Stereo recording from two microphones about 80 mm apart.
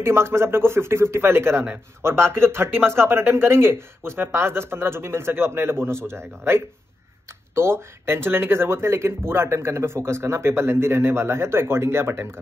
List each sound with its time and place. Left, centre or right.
0.0 s speech: right